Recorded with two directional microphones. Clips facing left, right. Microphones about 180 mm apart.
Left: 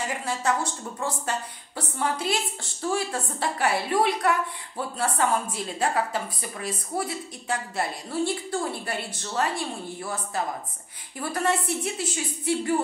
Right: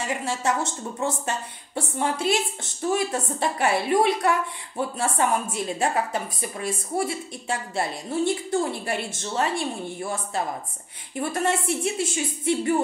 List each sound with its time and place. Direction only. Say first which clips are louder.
0.0 s a woman's voice: right 1 dB; 25° right (ahead or behind)
11.1 s a woman's voice: right 1 dB; 25° right (ahead or behind)